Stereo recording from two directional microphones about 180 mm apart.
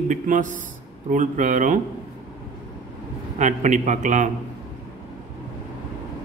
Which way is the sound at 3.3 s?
40° right (ahead or behind).